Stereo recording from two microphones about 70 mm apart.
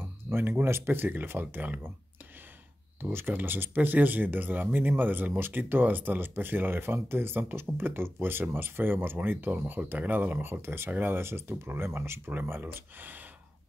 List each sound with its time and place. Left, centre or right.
0.0 s speech: right
3.0 s speech: right